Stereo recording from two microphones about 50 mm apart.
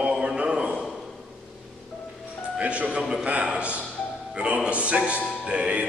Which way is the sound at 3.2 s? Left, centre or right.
Right.